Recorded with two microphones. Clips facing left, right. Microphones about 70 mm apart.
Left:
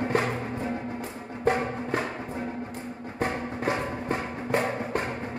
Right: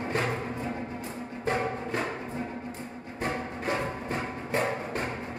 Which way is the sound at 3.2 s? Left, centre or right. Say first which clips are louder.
Left 3 dB; left.